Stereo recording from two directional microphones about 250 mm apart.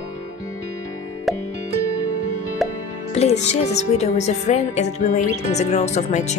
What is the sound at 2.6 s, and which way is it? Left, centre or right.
Music, centre.